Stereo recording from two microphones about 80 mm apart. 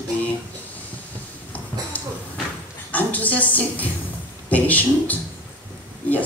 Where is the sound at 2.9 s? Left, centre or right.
Centre.